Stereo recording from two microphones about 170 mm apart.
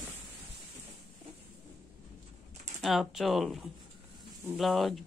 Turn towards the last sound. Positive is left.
turn(degrees=0)  # may be behind; listen again after turning